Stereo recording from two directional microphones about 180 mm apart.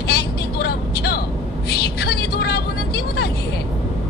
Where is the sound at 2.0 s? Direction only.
65° left (ahead or behind).